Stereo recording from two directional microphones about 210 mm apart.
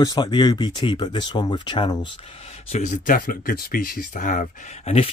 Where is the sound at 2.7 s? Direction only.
35° left (ahead or behind).